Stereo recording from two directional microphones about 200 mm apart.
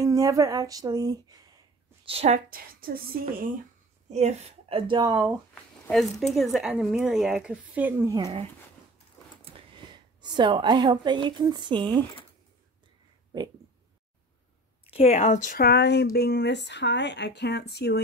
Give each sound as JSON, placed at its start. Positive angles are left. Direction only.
{"t": 0.0, "sound": "speech", "side_deg": -15}
{"t": 2.0, "sound": "a woman's voice", "side_deg": -30}
{"t": 4.1, "sound": "a woman's voice", "side_deg": -35}
{"t": 5.5, "sound": "speech", "side_deg": 0}
{"t": 10.2, "sound": "a woman's voice", "side_deg": -25}
{"t": 14.9, "sound": "speech", "side_deg": 30}